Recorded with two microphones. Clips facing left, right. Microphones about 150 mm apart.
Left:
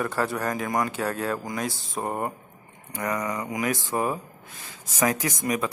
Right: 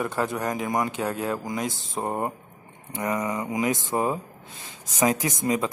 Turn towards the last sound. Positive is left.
turn(degrees=-20)  # may be behind; listen again after turning